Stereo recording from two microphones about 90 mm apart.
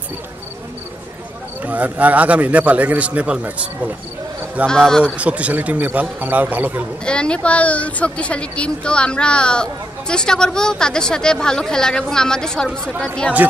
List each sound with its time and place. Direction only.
1.6 s a man's voice: 20° right (ahead or behind)
4.6 s a man's voice: 5° left (ahead or behind)
5.1 s a man's voice: 15° right (ahead or behind)
7.1 s a woman's voice: 10° left (ahead or behind)